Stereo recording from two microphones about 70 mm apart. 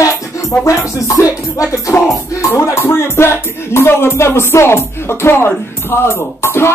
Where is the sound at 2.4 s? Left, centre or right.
Left.